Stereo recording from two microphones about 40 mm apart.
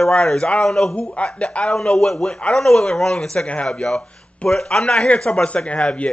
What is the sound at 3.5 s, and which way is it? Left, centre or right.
A man's voice, left.